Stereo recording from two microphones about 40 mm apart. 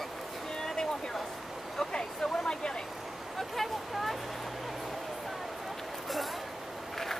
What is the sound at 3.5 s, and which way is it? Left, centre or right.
Speech, centre.